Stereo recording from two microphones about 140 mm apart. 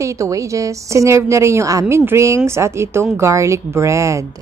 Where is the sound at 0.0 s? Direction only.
20° right (ahead or behind).